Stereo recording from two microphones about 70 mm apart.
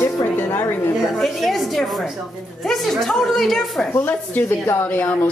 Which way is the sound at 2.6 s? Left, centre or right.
Centre.